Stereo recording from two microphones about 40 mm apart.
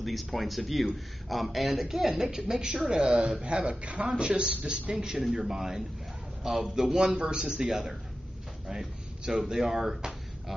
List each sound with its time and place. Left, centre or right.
0.0 s a man's voice: centre
3.8 s a man's voice: right
4.9 s a man's voice: centre
7.2 s a man's voice: right
7.6 s a man's voice: centre
8.6 s a sound: centre
9.5 s speech: centre